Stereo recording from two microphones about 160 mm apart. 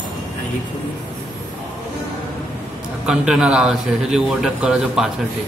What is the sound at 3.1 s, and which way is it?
A man's voice, 5° right (ahead or behind).